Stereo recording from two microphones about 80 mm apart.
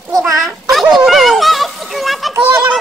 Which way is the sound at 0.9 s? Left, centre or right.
Centre.